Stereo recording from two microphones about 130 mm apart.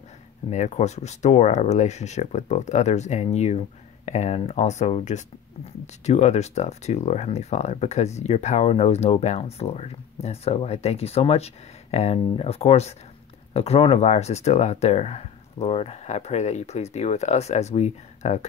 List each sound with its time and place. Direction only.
0.5 s speech: 60° left (ahead or behind)